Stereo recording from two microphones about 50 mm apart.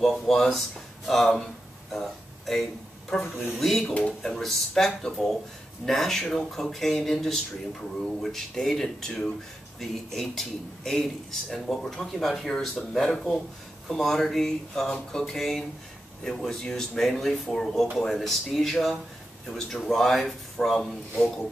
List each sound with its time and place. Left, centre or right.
0.0 s speech: centre
3.8 s speech: left
4.2 s a man's voice: centre
17.9 s a man's voice: centre